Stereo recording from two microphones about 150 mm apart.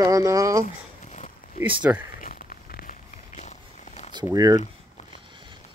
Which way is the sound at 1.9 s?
15° right (ahead or behind).